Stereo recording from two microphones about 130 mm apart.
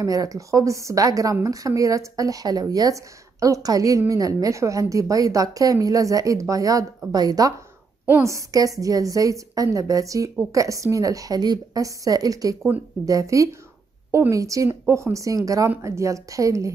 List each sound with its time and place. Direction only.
0.0 s speech: 25° right (ahead or behind)